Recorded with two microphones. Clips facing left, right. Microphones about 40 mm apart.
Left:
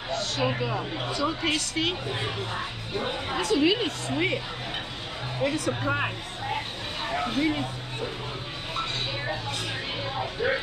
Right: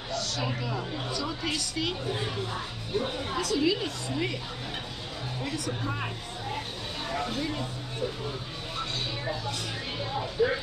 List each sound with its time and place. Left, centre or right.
0.4 s a woman's voice: left
5.4 s speech: left
8.7 s a sound: left
10.0 s speech: left